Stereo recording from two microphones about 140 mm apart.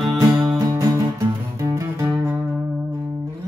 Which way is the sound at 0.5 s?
25° right (ahead or behind).